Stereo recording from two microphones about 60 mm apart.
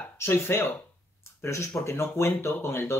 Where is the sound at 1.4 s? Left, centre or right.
Left.